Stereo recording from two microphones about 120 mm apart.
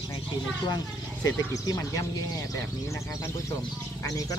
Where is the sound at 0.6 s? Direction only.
35° left (ahead or behind).